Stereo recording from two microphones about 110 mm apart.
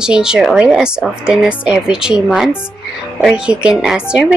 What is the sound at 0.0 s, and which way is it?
A woman's voice, 5° right (ahead or behind).